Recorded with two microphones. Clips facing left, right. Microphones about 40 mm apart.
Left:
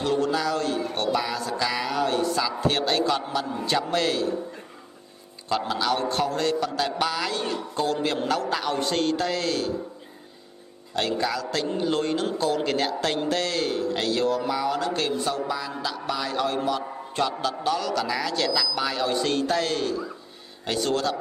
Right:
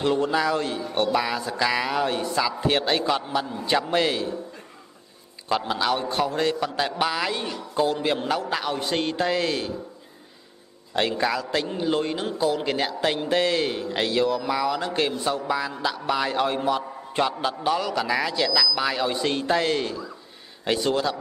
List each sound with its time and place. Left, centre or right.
0.0 s a man's voice: right
5.7 s a man's voice: centre
11.0 s a man's voice: right
11.6 s a man's voice: centre; by 20.0 s right
20.8 s a man's voice: centre